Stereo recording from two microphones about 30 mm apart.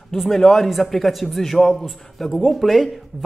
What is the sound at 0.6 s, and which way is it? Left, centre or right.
Speech, centre.